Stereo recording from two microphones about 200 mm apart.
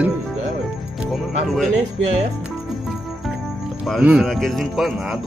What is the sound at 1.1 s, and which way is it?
Speech, centre (ahead or behind).